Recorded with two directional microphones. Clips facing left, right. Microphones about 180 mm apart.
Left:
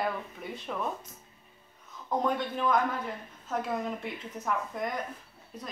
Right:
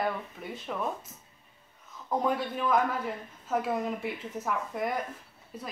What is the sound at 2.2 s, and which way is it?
Speech, 5° right (ahead or behind).